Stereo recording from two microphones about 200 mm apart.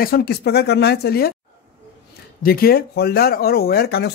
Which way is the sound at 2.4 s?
50° left (ahead or behind).